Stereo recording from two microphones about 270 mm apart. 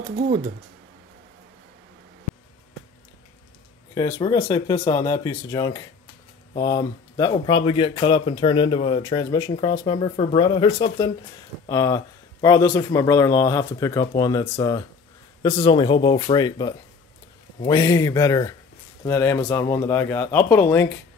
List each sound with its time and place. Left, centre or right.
3.9 s speech: centre